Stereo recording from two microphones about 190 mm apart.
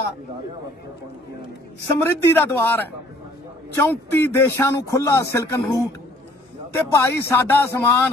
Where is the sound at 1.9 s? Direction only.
10° left (ahead or behind).